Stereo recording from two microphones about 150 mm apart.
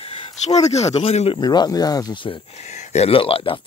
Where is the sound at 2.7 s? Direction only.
45° left (ahead or behind).